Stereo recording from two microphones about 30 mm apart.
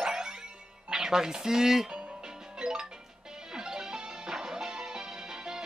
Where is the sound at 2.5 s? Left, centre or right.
Right.